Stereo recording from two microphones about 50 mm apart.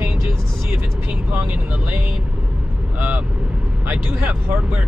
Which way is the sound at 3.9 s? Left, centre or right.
Right.